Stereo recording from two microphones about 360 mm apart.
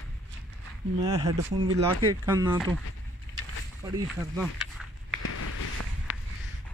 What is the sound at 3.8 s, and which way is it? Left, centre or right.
Speech, centre.